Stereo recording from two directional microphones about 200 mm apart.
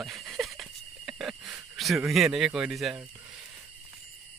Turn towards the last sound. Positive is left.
turn(degrees=0)  # may be behind; listen again after turning